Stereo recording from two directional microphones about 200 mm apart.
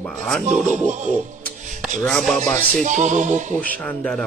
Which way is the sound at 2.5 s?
40° right (ahead or behind).